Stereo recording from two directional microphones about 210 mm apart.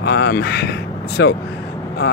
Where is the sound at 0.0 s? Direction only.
50° left (ahead or behind).